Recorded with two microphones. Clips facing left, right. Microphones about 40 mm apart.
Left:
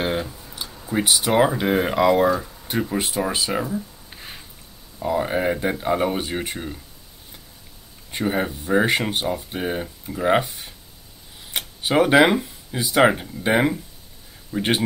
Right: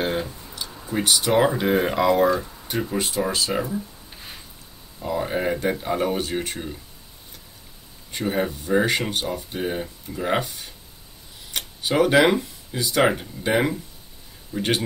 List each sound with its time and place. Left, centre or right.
0.0 s a sound: centre
0.8 s speech: centre
8.1 s speech: centre